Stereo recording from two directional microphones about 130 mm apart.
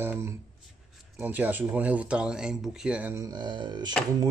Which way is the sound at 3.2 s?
30° right (ahead or behind).